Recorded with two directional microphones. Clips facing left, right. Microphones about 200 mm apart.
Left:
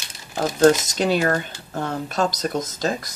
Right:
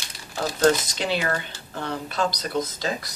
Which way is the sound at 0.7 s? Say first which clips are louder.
Left 4 dB; 45° left (ahead or behind).